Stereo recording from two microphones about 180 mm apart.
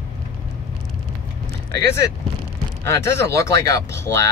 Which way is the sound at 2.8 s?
15° left (ahead or behind).